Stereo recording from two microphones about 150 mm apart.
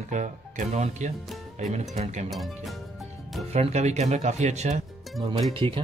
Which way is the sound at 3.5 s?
45° right (ahead or behind).